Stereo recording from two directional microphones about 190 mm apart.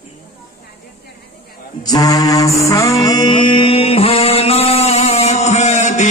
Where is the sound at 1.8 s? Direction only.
20° left (ahead or behind).